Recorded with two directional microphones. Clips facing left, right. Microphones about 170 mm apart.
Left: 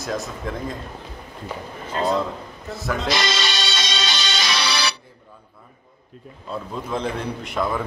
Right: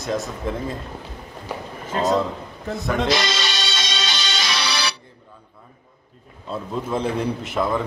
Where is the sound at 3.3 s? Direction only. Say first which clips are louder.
Left 1 dB; 80° left.